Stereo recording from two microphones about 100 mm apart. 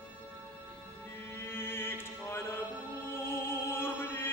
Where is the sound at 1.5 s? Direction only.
25° left (ahead or behind).